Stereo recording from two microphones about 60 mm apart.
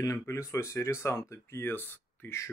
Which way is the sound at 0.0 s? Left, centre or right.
Left.